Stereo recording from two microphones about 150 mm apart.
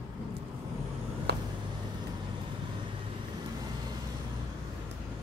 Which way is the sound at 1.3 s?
90° right.